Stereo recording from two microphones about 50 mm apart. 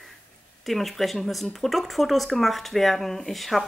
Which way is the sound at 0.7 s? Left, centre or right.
Centre.